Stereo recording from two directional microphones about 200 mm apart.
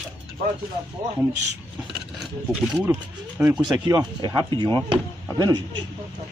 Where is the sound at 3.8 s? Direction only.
20° right (ahead or behind).